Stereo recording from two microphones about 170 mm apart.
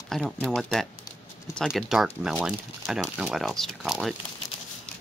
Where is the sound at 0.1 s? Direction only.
Centre (ahead or behind).